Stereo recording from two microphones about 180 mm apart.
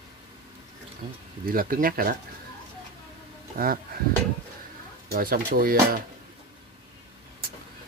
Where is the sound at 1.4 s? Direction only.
55° right (ahead or behind).